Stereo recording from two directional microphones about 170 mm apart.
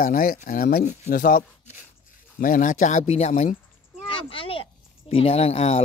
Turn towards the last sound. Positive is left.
turn(degrees=40)  # may be behind; listen again after turning